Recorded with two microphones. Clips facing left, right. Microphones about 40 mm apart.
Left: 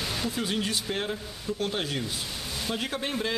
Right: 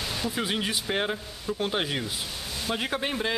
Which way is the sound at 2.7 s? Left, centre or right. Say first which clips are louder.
Right 3 dB; centre.